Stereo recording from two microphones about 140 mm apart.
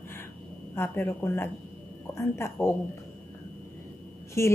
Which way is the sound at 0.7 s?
15° left (ahead or behind).